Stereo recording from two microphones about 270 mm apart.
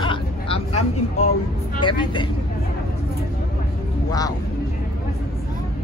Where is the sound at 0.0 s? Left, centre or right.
Centre.